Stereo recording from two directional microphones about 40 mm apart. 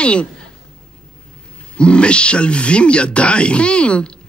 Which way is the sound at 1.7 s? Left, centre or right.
Left.